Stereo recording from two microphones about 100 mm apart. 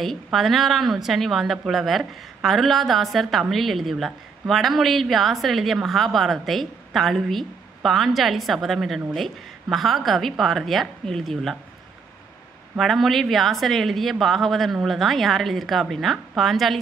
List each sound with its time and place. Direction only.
0.0 s speech: centre (ahead or behind)
12.7 s speech: centre (ahead or behind)